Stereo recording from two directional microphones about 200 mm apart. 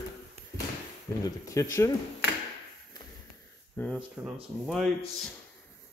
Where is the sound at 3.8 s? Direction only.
10° left (ahead or behind).